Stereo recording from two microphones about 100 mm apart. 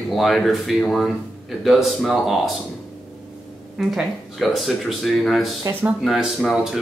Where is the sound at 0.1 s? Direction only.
Centre (ahead or behind).